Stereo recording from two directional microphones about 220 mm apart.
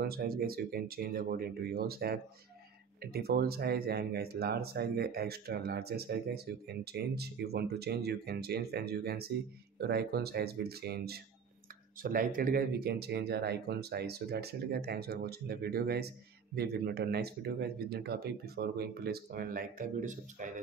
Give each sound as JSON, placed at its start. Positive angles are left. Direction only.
{"t": 0.0, "sound": "speech", "side_deg": -45}